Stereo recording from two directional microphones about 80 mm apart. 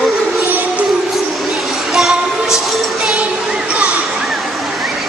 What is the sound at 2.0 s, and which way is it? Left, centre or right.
Music, centre.